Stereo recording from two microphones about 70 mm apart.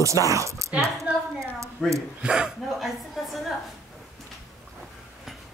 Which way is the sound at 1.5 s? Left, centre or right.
Right.